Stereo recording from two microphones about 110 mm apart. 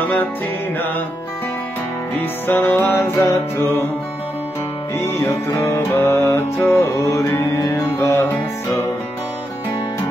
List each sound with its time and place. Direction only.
0.0 s music: 20° left (ahead or behind)
2.1 s music: 15° left (ahead or behind)
4.9 s music: 25° left (ahead or behind)